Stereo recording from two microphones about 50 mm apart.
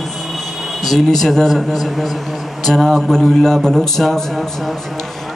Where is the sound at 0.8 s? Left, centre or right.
Centre.